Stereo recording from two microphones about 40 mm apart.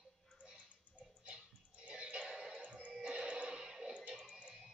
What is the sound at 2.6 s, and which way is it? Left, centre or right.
Music, right.